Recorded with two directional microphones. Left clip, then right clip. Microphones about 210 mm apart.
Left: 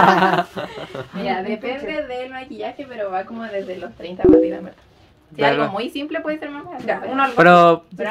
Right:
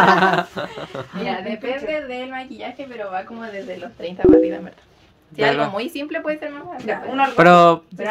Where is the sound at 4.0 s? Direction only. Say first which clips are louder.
Right 1 dB; 45° right (ahead or behind).